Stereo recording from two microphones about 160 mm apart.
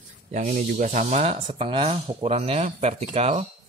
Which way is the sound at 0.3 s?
50° right (ahead or behind).